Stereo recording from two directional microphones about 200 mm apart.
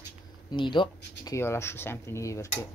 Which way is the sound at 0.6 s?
25° left (ahead or behind).